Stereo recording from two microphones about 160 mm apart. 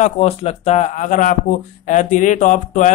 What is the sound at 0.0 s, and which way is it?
Speech, 40° left (ahead or behind).